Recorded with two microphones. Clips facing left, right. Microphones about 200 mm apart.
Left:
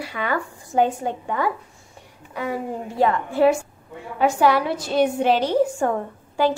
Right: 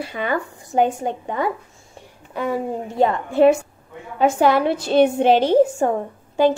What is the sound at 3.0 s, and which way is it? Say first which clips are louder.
A woman's voice: right 3 dB; 25° right (ahead or behind).